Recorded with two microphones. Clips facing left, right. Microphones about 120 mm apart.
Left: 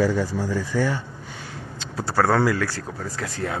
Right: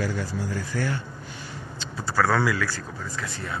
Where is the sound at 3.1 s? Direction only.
80° left.